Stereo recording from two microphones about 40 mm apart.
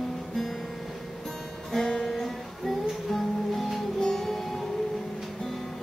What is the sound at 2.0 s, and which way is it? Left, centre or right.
Music, centre.